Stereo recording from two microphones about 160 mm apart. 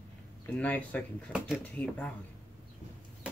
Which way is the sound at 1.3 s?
5° right (ahead or behind).